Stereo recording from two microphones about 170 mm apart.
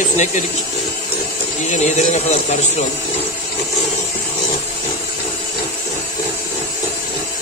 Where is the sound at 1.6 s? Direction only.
45° left (ahead or behind).